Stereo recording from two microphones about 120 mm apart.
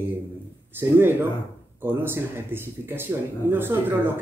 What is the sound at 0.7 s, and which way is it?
Speech, 20° right (ahead or behind).